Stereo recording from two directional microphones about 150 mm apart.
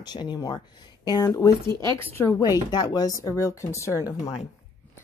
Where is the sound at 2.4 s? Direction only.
30° left (ahead or behind).